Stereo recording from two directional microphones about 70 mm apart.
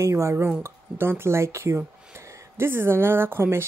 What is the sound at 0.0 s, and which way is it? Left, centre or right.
Speech, right.